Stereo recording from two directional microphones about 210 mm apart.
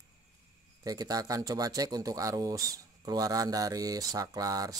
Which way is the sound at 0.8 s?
20° right (ahead or behind).